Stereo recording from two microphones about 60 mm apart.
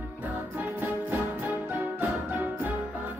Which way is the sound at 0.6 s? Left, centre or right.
Right.